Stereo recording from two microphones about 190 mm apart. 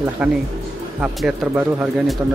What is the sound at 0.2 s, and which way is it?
Speech, 5° right (ahead or behind).